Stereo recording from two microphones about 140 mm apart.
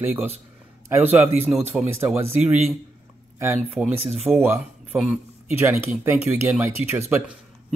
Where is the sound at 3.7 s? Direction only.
Centre (ahead or behind).